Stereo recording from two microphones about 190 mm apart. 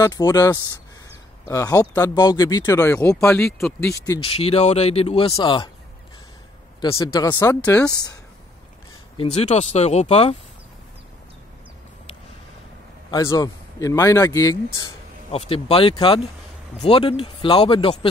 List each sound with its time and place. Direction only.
0.0 s speech: 20° left (ahead or behind)
4.2 s speech: 30° left (ahead or behind)
6.8 s speech: 20° left (ahead or behind)
9.1 s speech: 30° left (ahead or behind)
13.1 s speech: 20° left (ahead or behind)
15.3 s speech: 30° left (ahead or behind)